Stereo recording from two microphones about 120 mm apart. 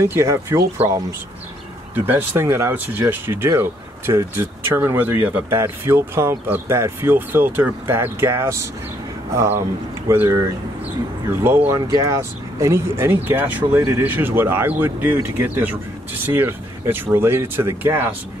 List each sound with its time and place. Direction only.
0.0 s speech: 25° right (ahead or behind)
2.0 s speech: 15° right (ahead or behind)
10.0 s speech: 20° right (ahead or behind)
11.4 s speech: 20° right (ahead or behind)